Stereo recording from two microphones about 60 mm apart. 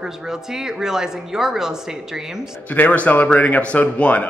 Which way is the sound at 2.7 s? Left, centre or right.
Left.